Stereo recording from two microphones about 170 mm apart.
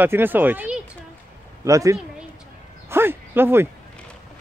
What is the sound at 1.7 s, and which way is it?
Speech, 20° right (ahead or behind).